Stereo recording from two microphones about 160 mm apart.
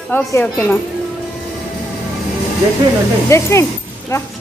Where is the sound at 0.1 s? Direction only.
15° left (ahead or behind).